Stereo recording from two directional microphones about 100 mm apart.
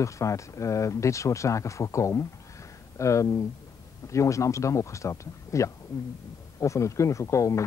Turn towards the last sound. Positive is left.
turn(degrees=30)  # may be behind; listen again after turning